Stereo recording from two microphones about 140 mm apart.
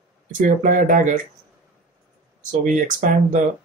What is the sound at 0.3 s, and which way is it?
Speech, 70° right (ahead or behind).